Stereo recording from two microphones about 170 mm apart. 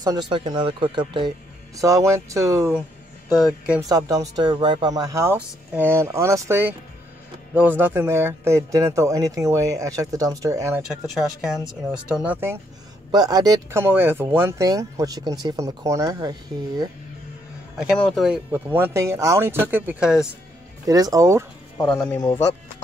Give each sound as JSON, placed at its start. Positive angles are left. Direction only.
{"t": 0.0, "sound": "a man's voice", "side_deg": -25}
{"t": 3.9, "sound": "a man's voice", "side_deg": -20}
{"t": 10.9, "sound": "speech", "side_deg": 0}
{"t": 13.1, "sound": "speech", "side_deg": -20}
{"t": 17.7, "sound": "speech", "side_deg": 0}
{"t": 18.5, "sound": "a man's voice", "side_deg": -15}
{"t": 20.8, "sound": "speech", "side_deg": -20}
{"t": 21.8, "sound": "speech", "side_deg": 5}